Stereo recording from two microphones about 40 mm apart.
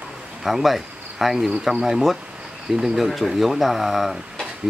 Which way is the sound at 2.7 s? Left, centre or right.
Centre.